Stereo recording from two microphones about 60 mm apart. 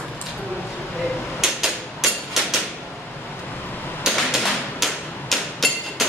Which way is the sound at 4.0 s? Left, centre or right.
Centre.